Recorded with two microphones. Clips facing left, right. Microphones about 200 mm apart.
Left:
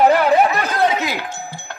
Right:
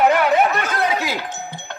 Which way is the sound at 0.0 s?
35° left (ahead or behind).